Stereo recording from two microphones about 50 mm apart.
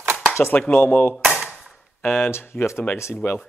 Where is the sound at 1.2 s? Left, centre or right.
Centre.